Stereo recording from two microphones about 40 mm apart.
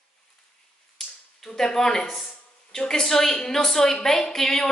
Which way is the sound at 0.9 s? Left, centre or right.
Centre.